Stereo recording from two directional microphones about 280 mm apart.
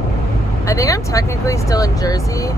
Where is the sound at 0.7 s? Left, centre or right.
Centre.